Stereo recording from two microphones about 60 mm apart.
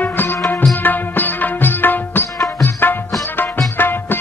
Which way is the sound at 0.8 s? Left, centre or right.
Left.